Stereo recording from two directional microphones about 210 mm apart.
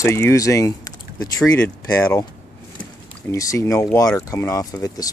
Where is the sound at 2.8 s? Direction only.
15° left (ahead or behind).